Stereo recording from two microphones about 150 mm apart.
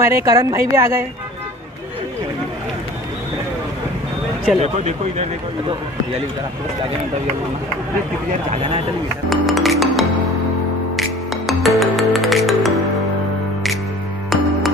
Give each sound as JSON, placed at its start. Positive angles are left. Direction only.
{"t": 0.0, "sound": "a woman's voice", "side_deg": -20}
{"t": 4.6, "sound": "speech", "side_deg": -50}
{"t": 9.3, "sound": "music", "side_deg": 0}